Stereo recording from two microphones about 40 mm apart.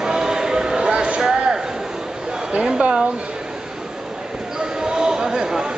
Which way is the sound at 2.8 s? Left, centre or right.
Right.